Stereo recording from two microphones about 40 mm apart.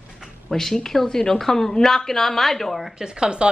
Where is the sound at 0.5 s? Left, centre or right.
Centre.